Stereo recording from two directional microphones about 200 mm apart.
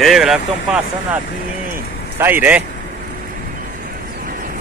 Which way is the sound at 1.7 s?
10° right (ahead or behind).